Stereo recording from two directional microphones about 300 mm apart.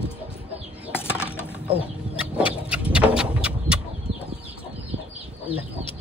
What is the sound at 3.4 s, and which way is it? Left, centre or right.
Bird, centre.